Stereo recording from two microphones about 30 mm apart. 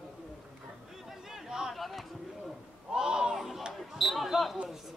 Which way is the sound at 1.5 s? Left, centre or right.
Right.